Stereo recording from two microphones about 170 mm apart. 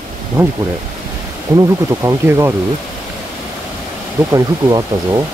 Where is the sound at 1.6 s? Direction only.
15° right (ahead or behind).